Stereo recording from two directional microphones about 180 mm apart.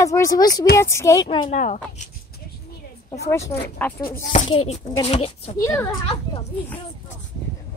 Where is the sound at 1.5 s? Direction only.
40° left (ahead or behind).